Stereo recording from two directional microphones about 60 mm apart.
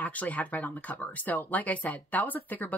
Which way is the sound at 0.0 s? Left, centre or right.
Left.